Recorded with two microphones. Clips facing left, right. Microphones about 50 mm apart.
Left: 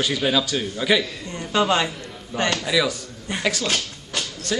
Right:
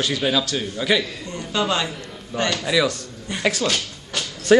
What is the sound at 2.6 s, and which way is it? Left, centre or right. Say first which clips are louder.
A man's voice: right 1 dB; centre.